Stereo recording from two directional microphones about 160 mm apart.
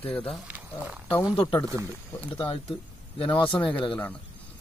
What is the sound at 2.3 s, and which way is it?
Speech, 30° left (ahead or behind).